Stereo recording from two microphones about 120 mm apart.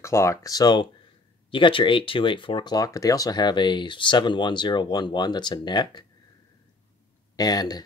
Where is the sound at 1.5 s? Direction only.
45° left (ahead or behind).